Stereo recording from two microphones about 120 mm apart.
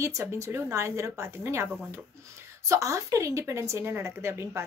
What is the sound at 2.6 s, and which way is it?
A woman's voice, 25° right (ahead or behind).